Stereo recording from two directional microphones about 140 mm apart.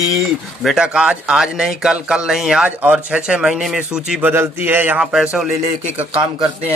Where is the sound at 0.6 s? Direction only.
5° right (ahead or behind).